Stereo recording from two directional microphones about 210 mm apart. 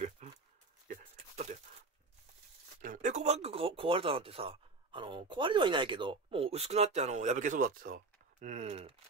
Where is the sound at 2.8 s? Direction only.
40° right (ahead or behind).